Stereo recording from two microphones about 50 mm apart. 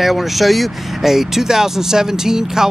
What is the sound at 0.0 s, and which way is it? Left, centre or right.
Speech, centre.